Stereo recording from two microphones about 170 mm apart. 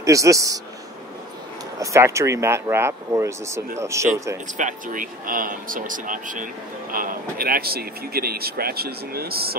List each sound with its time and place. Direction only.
0.0 s a man's voice: 20° right (ahead or behind)
1.8 s speech: 15° right (ahead or behind)
4.6 s speech: 50° right (ahead or behind)